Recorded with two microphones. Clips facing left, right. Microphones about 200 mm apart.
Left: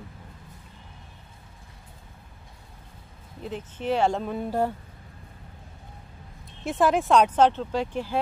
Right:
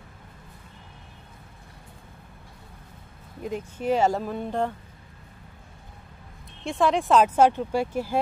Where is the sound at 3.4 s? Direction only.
10° right (ahead or behind); by 4.7 s 5° left (ahead or behind).